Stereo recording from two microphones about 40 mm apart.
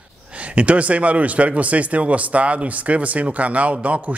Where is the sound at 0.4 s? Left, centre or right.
Right.